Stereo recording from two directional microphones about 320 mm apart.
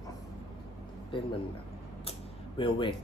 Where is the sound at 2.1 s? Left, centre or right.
Centre.